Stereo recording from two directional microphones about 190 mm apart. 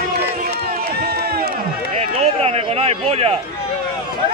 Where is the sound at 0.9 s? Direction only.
55° right (ahead or behind).